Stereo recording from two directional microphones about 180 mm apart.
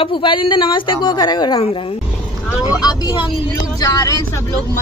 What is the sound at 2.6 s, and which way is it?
A woman's voice, 20° left (ahead or behind).